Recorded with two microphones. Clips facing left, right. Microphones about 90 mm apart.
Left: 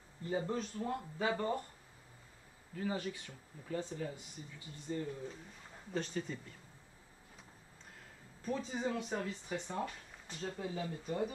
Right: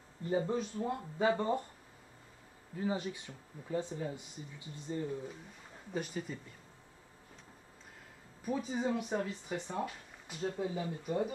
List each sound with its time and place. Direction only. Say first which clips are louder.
0.3 s speech: right 4 dB; 10° right (ahead or behind)
2.7 s speech: right 3 dB; 20° right (ahead or behind)
5.9 s speech: even; 10° right (ahead or behind)
8.4 s speech: right 3 dB; 10° right (ahead or behind)